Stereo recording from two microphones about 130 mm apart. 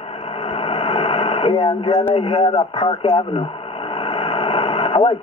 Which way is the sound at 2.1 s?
45° left (ahead or behind).